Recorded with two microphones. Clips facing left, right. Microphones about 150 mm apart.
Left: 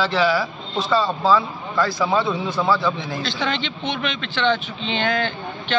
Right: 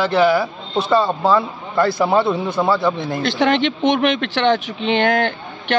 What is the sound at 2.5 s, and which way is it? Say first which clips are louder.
Speech: right 2 dB; 25° right (ahead or behind).